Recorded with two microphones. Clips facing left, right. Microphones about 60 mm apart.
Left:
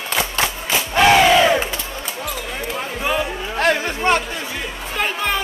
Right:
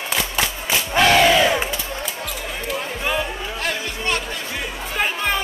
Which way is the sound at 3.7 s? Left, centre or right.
Left.